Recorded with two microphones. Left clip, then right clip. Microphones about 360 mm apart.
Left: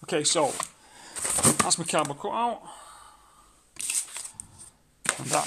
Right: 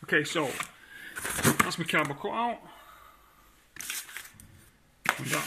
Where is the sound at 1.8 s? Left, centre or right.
Centre.